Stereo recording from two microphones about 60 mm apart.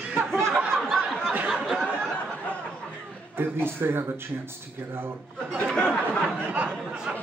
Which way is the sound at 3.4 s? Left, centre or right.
Right.